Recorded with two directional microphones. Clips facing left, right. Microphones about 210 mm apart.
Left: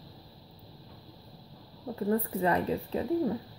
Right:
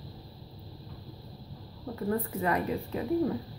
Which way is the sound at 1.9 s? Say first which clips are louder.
Left 2 dB; 30° left (ahead or behind).